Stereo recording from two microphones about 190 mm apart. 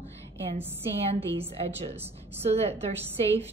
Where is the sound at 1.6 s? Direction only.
30° right (ahead or behind).